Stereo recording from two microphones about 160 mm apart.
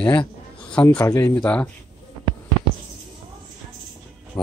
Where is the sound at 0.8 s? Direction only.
20° left (ahead or behind).